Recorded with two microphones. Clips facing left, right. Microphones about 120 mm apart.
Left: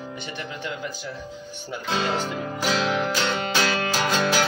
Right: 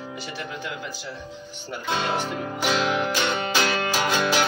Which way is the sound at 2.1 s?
10° right (ahead or behind).